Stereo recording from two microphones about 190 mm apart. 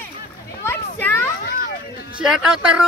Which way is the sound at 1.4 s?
50° left (ahead or behind).